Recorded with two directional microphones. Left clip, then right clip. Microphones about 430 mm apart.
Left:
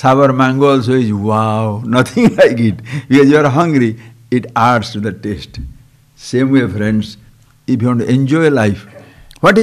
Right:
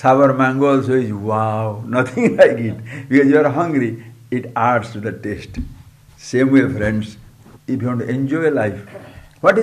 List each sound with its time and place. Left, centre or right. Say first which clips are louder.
0.0 s a man's voice: left 2 dB; left
7.6 s a man's voice: left 7 dB; left